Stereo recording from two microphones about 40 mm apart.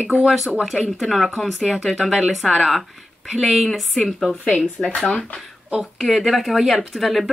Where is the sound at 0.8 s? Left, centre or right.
Centre.